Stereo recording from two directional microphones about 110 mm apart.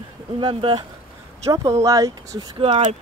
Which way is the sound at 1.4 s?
30° right (ahead or behind).